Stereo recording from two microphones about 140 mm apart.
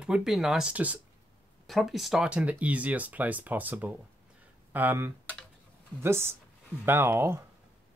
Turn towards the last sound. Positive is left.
turn(degrees=-20)  # may be behind; listen again after turning